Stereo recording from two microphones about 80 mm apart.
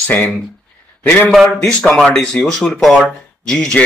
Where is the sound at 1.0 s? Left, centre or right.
Centre.